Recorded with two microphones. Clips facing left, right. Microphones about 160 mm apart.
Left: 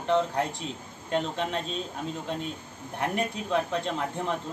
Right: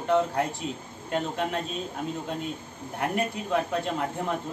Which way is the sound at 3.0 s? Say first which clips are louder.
Right 1 dB; 5° right (ahead or behind).